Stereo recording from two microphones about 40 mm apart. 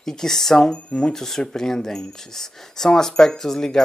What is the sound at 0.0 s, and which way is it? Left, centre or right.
Speech, centre.